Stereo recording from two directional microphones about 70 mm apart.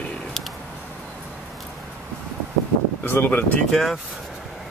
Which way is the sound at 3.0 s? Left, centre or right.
Left.